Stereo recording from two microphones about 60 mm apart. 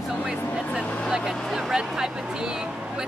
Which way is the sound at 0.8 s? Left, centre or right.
Centre.